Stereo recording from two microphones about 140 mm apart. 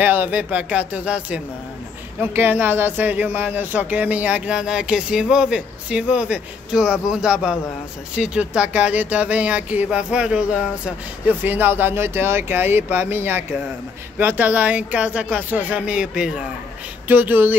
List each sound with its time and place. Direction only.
0.0 s speech: 15° right (ahead or behind)